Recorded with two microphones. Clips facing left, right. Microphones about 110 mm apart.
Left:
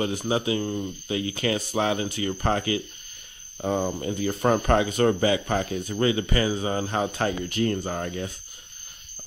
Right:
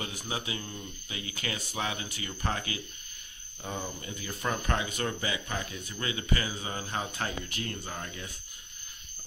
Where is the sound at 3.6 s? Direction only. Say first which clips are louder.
Left 12 dB; 45° left (ahead or behind).